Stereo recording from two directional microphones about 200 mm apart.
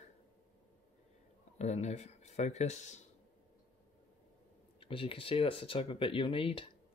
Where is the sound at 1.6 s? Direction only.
35° left (ahead or behind).